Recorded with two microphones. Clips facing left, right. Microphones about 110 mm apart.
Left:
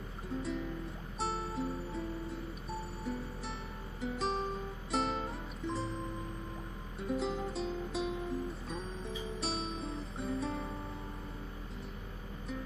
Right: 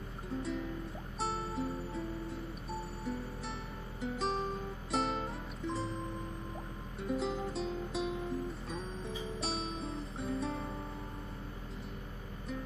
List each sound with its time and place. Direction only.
0.4 s music: centre (ahead or behind)
7.0 s music: centre (ahead or behind)